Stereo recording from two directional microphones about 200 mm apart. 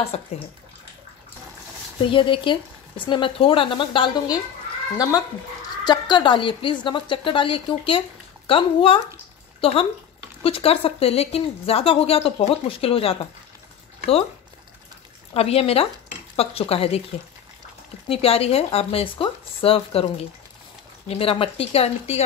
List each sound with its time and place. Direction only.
0.0 s speech: 30° left (ahead or behind)
2.0 s a woman's voice: 25° left (ahead or behind)
5.9 s a woman's voice: 25° left (ahead or behind)
15.3 s a woman's voice: 30° left (ahead or behind)
18.0 s a woman's voice: 30° left (ahead or behind)